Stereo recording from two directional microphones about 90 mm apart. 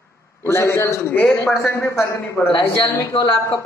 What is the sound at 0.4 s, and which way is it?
A man's voice, 30° left (ahead or behind).